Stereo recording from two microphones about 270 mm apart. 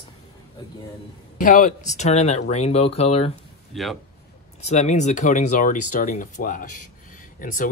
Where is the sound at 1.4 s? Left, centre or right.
Left.